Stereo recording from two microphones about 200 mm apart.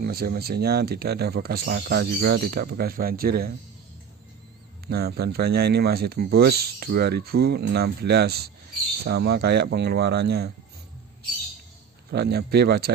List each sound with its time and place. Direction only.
0.0 s speech: 50° right (ahead or behind)
4.8 s speech: 50° right (ahead or behind)
12.1 s speech: 55° right (ahead or behind)